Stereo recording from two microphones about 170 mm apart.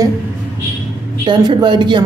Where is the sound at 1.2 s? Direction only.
25° right (ahead or behind).